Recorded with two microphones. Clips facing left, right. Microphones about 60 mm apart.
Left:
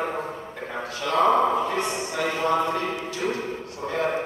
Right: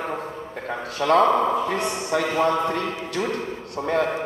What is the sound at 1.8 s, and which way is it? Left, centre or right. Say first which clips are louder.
Speech: right 2 dB; right.